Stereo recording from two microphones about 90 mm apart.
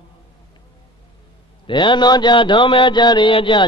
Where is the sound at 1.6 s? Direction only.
60° left (ahead or behind).